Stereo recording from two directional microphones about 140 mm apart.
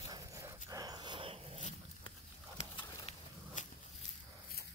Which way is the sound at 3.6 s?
65° left (ahead or behind).